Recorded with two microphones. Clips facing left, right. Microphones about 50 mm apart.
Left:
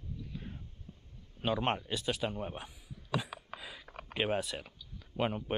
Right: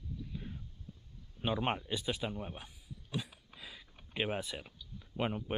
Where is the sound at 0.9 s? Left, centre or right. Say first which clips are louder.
Even; left.